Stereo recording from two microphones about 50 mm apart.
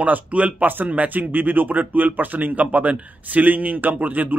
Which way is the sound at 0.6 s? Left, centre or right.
Right.